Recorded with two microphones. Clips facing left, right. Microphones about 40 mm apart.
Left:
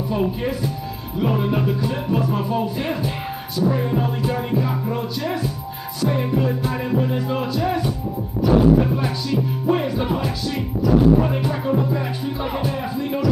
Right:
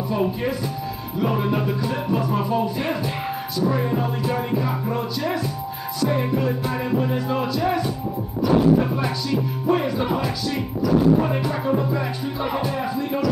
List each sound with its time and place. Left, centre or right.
0.1 s music: centre
8.8 s music: centre